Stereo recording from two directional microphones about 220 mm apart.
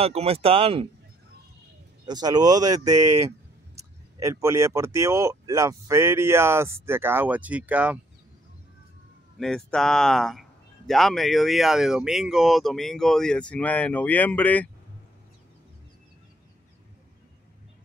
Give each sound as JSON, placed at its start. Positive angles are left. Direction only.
{"t": 0.0, "sound": "speech", "side_deg": -25}
{"t": 2.0, "sound": "speech", "side_deg": -20}
{"t": 4.2, "sound": "speech", "side_deg": -15}
{"t": 9.4, "sound": "speech", "side_deg": 0}